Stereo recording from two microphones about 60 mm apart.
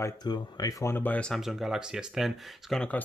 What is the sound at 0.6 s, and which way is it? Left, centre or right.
Speech, left.